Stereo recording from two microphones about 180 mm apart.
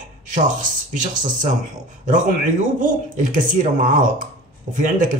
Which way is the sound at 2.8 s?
45° right (ahead or behind).